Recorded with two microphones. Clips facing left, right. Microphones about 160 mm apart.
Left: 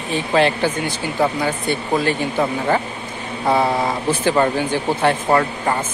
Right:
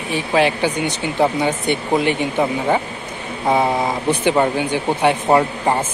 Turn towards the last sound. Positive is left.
turn(degrees=-25)  # may be behind; listen again after turning